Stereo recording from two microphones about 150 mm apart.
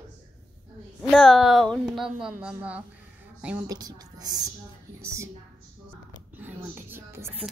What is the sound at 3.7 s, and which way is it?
Speech, 25° right (ahead or behind).